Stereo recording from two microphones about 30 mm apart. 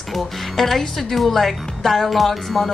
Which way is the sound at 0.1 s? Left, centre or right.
Centre.